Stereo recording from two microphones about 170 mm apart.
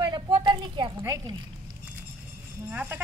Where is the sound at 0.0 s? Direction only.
25° right (ahead or behind).